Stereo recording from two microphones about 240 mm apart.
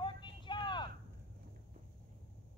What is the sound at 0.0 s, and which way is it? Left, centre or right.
Vehicle, centre.